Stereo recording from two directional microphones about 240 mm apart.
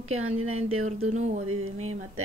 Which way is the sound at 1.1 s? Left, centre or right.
Right.